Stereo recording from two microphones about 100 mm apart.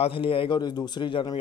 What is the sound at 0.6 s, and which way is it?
Speech, 50° left (ahead or behind).